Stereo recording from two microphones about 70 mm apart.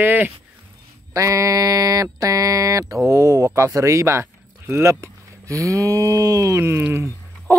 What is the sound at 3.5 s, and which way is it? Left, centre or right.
Speech, right.